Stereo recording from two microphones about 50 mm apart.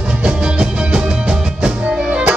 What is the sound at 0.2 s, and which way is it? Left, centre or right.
Music, centre.